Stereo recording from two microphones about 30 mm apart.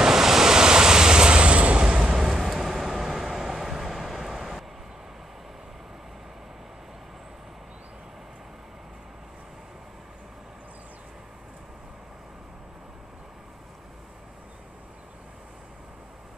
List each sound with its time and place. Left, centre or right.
0.0 s waves: centre; by 2.1 s right
2.1 s vehicle: centre